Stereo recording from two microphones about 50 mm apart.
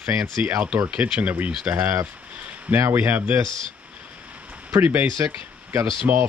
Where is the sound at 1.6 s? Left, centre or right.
Right.